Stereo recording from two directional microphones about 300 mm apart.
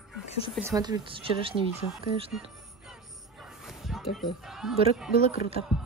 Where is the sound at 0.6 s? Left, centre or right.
Centre.